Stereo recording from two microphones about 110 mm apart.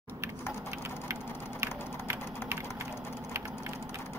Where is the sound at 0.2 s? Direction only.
25° right (ahead or behind).